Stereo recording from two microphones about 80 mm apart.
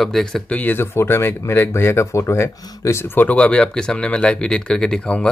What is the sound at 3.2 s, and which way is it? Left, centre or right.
Speech, centre.